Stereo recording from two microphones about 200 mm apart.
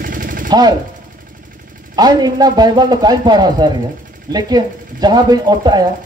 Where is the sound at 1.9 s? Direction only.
20° right (ahead or behind).